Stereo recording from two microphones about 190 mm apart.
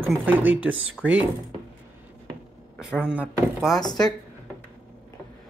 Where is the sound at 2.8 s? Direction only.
5° right (ahead or behind).